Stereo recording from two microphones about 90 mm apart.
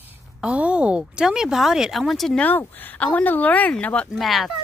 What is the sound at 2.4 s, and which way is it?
Speech, 20° left (ahead or behind).